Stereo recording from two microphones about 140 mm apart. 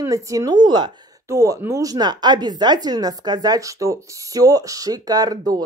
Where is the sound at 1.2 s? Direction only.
20° right (ahead or behind).